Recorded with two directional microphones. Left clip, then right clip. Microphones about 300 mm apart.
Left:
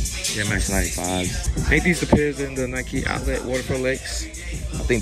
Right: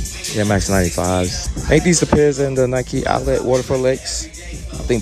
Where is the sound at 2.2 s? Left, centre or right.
Centre.